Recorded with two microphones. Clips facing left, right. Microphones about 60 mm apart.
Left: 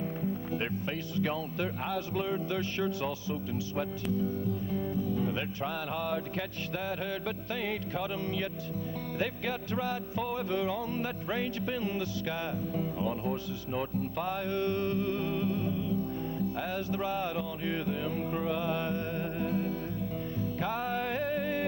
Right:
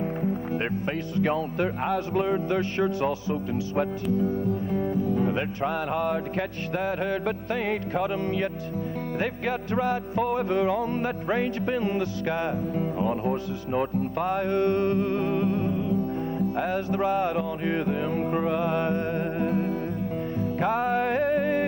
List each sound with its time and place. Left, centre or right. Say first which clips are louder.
1.1 s music: right 7 dB; right
9.2 s music: right 5 dB; right